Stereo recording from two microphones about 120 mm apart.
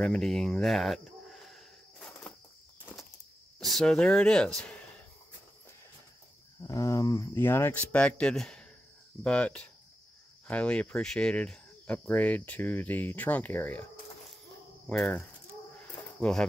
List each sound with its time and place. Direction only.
0.0 s a sound: 5° left (ahead or behind)
3.5 s speech: 5° left (ahead or behind)
6.6 s speech: 25° left (ahead or behind)
16.2 s speech: 5° left (ahead or behind)